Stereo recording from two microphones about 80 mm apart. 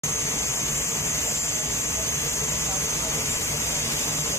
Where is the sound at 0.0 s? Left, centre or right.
Left.